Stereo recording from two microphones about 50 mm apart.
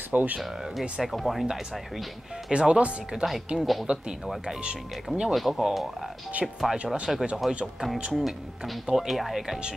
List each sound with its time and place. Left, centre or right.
0.1 s speech: right
1.0 s speech: centre
2.5 s speech: centre
3.5 s speech: centre
4.6 s speech: right
5.3 s speech: centre
5.6 s speech: centre